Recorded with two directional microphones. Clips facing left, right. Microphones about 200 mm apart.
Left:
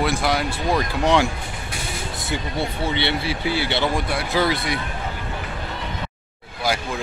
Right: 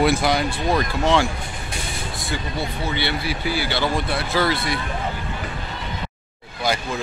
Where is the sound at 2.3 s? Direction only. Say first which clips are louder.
Left 2 dB; 25° left (ahead or behind).